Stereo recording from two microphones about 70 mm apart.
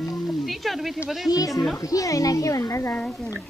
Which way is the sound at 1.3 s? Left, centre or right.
Left.